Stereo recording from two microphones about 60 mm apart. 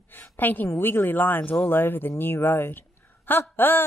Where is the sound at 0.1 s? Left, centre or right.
Left.